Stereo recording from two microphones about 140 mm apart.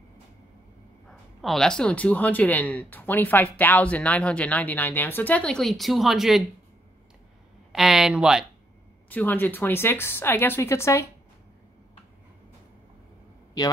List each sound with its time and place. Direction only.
1.0 s a woman's voice: centre (ahead or behind)
7.7 s speech: centre (ahead or behind)
9.1 s a woman's voice: 15° left (ahead or behind)